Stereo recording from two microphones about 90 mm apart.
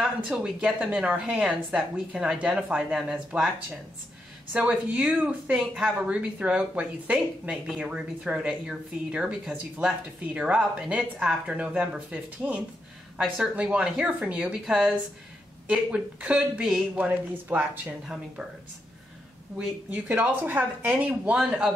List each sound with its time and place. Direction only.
0.3 s speech: 10° right (ahead or behind)
4.5 s a woman's voice: 10° right (ahead or behind)
5.9 s speech: 15° right (ahead or behind)
17.8 s speech: 5° right (ahead or behind)
19.9 s speech: 20° right (ahead or behind)
20.8 s speech: 10° right (ahead or behind)